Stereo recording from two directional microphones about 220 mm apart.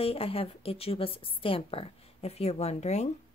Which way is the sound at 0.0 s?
25° left (ahead or behind).